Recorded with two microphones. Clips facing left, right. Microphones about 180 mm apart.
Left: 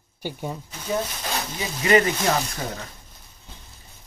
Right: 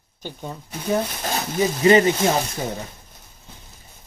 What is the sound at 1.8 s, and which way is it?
Speech, 25° right (ahead or behind).